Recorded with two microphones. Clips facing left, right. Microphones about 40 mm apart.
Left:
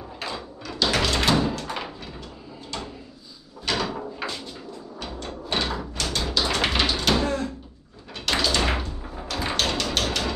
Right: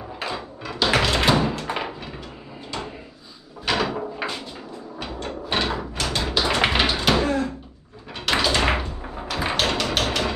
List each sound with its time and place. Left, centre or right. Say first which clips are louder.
0.2 s a sound: right 3 dB; centre
1.2 s music: right 2 dB; centre
1.5 s door: right 3 dB; right
3.6 s door: right 3 dB; centre
4.9 s a sound: right 4 dB; centre
8.3 s door: right 3 dB; centre